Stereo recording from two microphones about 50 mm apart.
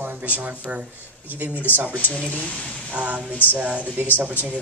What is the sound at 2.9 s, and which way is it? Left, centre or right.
A man's voice, right.